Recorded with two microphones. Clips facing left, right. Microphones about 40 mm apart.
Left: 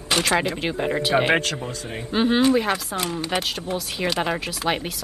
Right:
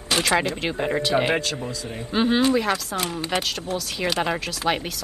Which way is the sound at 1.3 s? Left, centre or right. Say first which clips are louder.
Left 3 dB; left.